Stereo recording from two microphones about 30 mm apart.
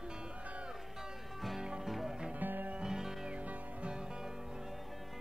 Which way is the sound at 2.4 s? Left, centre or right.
Right.